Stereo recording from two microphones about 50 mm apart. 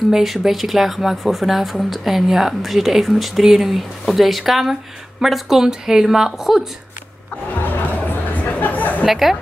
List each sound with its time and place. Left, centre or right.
0.1 s speech: centre
7.6 s music: left
9.0 s speech: centre